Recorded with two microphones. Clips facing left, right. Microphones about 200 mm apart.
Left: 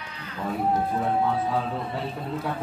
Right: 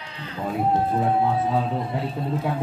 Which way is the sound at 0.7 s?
25° right (ahead or behind).